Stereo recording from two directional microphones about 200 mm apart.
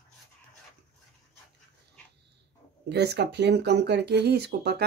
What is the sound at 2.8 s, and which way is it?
Speech, 55° right (ahead or behind).